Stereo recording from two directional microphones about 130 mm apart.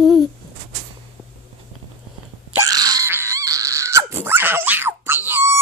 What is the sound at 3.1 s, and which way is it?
Dog, 20° right (ahead or behind).